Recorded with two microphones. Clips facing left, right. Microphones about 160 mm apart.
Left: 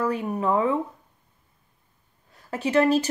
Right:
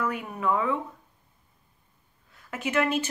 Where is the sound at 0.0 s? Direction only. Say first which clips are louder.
Left 4 dB; 30° left (ahead or behind).